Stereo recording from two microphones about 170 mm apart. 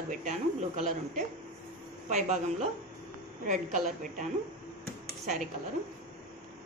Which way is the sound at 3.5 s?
45° right (ahead or behind).